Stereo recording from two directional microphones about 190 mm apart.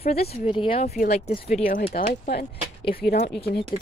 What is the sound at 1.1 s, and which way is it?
Speech, 35° left (ahead or behind).